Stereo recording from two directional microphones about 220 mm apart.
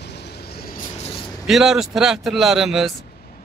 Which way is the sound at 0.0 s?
50° left (ahead or behind).